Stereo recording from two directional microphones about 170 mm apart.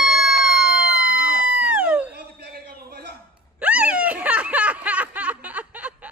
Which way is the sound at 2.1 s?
75° right (ahead or behind).